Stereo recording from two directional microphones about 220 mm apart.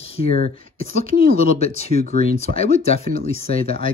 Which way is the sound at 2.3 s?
30° left (ahead or behind).